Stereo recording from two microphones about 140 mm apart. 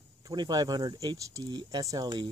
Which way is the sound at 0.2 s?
30° right (ahead or behind).